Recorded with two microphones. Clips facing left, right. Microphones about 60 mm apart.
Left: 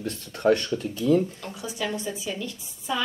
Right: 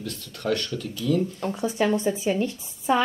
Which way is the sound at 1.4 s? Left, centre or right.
Right.